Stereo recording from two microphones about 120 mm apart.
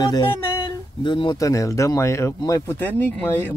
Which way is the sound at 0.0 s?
30° left (ahead or behind).